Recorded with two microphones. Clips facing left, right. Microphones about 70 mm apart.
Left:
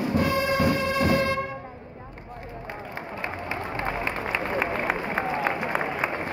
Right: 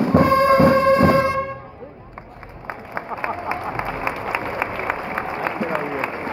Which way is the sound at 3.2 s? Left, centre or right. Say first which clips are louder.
Right 6 dB; centre.